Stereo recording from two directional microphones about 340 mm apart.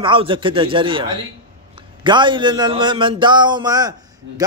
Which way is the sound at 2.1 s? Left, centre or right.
Centre.